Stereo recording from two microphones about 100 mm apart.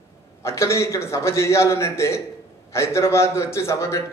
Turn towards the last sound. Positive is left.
turn(degrees=30)  # may be behind; listen again after turning